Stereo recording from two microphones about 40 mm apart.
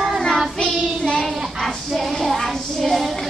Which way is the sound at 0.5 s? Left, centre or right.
Centre.